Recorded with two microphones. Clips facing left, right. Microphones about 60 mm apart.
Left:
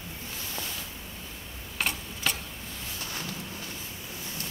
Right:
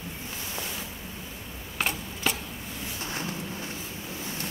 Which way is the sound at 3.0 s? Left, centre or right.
Right.